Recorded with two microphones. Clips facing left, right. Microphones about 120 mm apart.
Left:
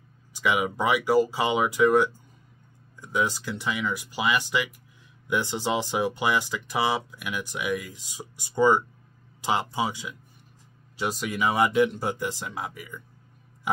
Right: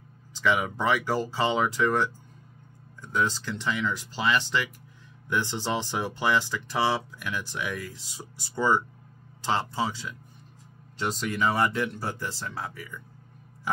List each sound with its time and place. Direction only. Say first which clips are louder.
0.3 s speech: even; 15° left (ahead or behind)